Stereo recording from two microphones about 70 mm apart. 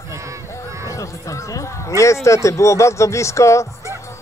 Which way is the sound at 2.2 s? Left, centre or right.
Left.